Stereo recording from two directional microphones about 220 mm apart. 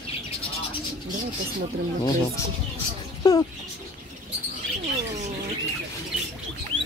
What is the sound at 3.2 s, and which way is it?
Music, 15° left (ahead or behind).